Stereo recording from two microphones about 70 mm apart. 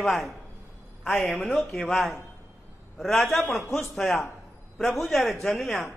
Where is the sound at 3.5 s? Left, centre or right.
Left.